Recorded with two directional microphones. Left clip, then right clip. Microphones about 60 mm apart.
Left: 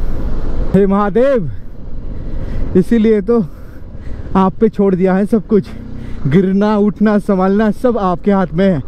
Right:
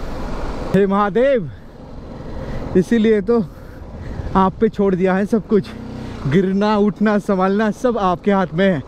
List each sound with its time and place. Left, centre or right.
0.2 s vehicle: right
0.7 s speech: left
2.4 s speech: left